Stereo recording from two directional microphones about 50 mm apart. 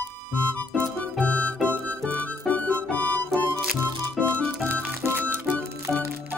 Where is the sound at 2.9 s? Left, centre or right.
Left.